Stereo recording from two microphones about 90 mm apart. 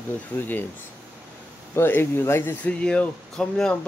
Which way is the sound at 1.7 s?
25° left (ahead or behind).